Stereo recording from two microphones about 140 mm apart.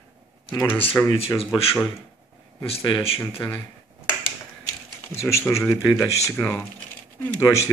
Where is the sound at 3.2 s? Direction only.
15° left (ahead or behind).